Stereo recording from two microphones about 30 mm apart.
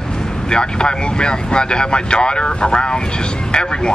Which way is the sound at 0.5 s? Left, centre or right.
Left.